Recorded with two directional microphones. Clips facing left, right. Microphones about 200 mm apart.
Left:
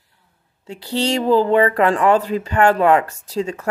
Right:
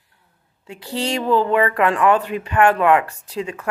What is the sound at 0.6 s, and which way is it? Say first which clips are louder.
Speech: left 3 dB; 30° left (ahead or behind).